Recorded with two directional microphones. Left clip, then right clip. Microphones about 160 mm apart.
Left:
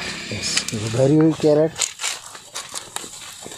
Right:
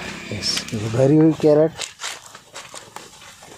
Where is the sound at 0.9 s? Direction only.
5° right (ahead or behind).